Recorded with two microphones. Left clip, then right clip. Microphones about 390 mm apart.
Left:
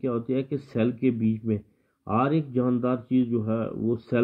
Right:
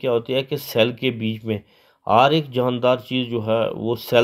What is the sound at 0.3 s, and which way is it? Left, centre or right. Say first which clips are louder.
Speech: right 6 dB; right.